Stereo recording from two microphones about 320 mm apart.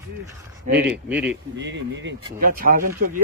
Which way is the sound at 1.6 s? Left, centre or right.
Right.